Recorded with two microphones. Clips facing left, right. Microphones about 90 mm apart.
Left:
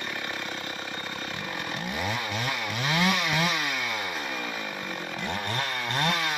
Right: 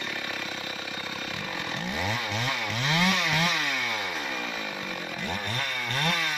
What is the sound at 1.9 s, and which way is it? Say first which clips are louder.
Chainsaw: even; 10° left (ahead or behind).